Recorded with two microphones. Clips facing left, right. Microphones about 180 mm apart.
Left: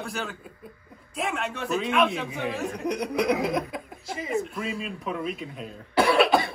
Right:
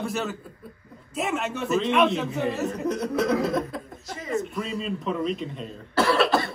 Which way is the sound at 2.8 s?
15° left (ahead or behind).